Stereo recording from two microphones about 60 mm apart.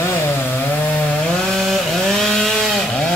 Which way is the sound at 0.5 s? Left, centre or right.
Left.